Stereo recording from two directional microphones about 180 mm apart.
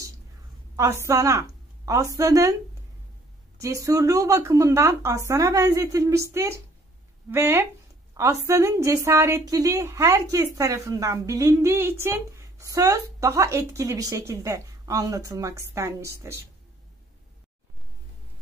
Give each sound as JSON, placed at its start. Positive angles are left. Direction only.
{"t": 0.7, "sound": "a woman's voice", "side_deg": -15}
{"t": 3.6, "sound": "a woman's voice", "side_deg": -15}